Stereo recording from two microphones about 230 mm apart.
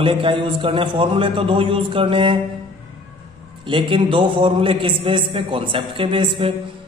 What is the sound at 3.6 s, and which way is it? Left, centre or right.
A man's voice, right.